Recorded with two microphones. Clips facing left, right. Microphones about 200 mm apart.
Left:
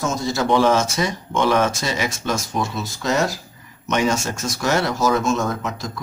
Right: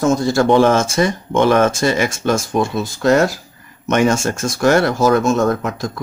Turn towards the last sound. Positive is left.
turn(degrees=-55)  # may be behind; listen again after turning